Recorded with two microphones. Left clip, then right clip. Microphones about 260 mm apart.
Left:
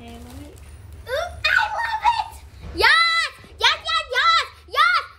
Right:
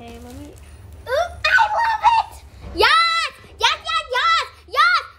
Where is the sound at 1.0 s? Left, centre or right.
Right.